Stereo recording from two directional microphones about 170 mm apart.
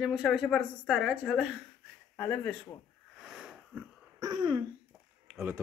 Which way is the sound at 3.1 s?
Centre (ahead or behind).